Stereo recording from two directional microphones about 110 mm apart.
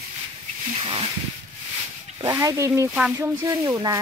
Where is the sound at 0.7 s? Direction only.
55° right (ahead or behind).